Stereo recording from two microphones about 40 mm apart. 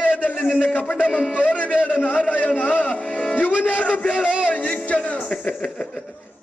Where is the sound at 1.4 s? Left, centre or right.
Left.